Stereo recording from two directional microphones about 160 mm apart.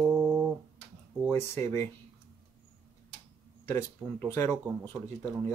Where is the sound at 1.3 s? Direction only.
15° left (ahead or behind).